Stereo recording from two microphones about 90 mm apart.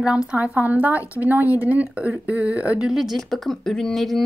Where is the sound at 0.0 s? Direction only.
10° right (ahead or behind).